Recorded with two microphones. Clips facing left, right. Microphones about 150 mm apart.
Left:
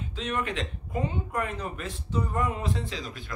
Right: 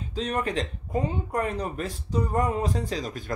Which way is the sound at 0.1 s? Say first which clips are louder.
Right 4 dB; 35° right (ahead or behind).